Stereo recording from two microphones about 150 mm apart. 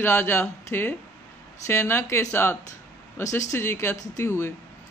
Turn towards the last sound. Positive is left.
turn(degrees=15)  # may be behind; listen again after turning